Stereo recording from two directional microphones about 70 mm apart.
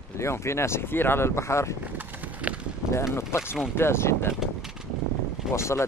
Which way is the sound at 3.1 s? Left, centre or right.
Left.